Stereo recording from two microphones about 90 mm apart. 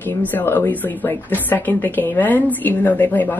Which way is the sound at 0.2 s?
20° left (ahead or behind).